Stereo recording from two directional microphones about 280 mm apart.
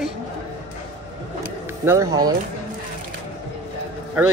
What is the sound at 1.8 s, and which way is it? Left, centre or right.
Speech, centre.